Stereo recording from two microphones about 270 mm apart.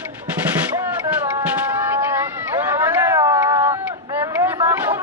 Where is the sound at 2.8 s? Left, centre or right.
Centre.